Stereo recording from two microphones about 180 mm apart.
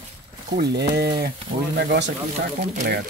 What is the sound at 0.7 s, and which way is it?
Speech, 65° right (ahead or behind).